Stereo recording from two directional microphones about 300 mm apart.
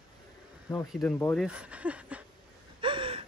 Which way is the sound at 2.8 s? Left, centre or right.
Centre.